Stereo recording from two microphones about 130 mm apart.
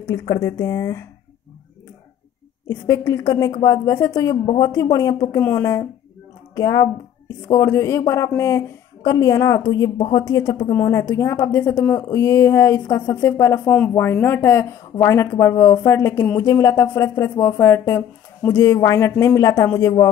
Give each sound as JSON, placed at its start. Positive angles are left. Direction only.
{"t": 0.1, "sound": "speech", "side_deg": 25}
{"t": 2.7, "sound": "speech", "side_deg": 25}
{"t": 13.7, "sound": "speech", "side_deg": 10}